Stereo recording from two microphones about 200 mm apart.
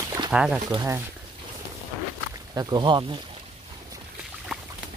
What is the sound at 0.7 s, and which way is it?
Speech, 15° right (ahead or behind).